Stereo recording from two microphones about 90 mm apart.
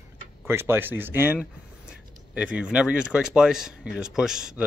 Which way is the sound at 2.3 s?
10° right (ahead or behind).